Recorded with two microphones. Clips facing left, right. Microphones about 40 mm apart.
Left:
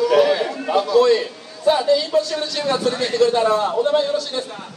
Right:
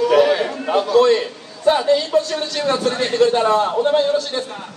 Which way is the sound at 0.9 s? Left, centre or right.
Right.